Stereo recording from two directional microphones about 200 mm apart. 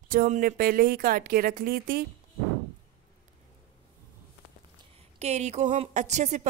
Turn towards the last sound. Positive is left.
turn(degrees=-35)  # may be behind; listen again after turning